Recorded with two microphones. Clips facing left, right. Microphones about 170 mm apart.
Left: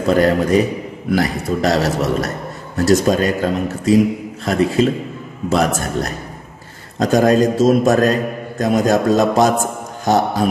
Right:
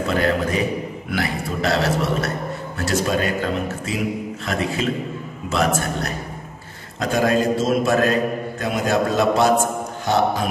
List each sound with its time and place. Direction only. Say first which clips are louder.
0.0 s a man's voice: left 6 dB; 40° left (ahead or behind)